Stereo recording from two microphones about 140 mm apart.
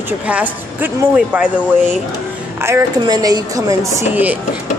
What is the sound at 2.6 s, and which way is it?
Speech, 20° right (ahead or behind).